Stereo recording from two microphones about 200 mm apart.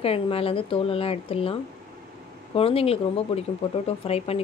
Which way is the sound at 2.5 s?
30° left (ahead or behind).